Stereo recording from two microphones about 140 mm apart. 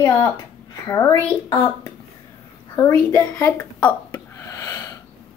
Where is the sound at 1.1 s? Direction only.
35° left (ahead or behind).